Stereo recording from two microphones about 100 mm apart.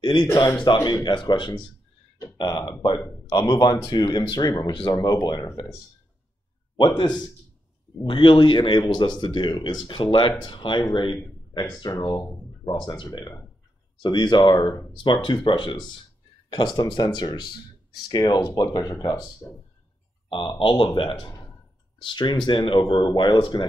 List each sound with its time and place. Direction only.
0.8 s speech: 45° left (ahead or behind)
7.0 s speech: 50° left (ahead or behind)
12.6 s speech: 50° left (ahead or behind)
20.2 s speech: 55° left (ahead or behind)